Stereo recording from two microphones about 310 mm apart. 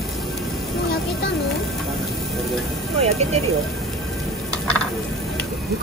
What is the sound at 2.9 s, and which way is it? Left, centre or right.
Speech, centre.